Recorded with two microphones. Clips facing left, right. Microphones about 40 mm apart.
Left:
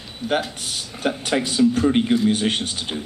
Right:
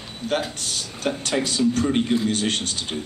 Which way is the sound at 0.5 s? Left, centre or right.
Centre.